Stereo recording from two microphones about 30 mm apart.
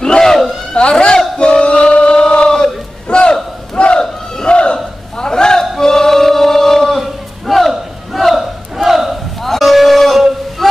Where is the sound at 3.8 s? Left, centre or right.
Left.